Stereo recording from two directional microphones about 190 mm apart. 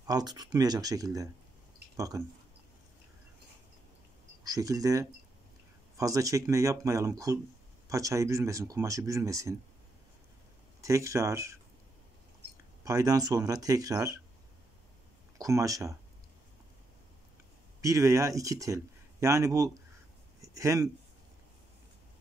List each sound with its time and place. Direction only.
0.0 s speech: 20° right (ahead or behind)
4.5 s speech: 20° right (ahead or behind)
10.8 s speech: 15° right (ahead or behind)
12.8 s speech: 20° right (ahead or behind)
15.3 s speech: 15° right (ahead or behind)
17.8 s speech: 15° right (ahead or behind)